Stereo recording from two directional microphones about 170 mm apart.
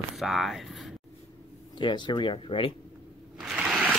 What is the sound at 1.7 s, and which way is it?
Speech, 25° left (ahead or behind).